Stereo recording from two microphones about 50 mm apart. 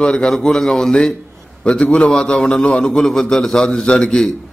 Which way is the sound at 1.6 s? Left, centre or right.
Left.